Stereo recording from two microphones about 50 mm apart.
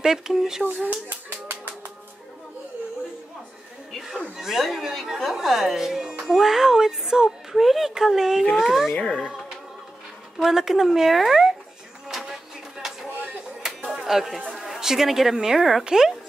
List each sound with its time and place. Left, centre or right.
0.0 s speech: centre
1.0 s music: right
4.4 s speech: centre
8.9 s speech: centre
10.4 s speech: centre
12.1 s a sound: centre
14.6 s speech: centre